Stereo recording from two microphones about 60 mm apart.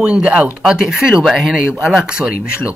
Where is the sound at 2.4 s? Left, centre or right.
Left.